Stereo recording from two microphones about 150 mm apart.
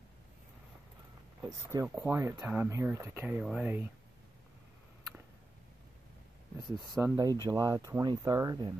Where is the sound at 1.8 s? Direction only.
10° right (ahead or behind).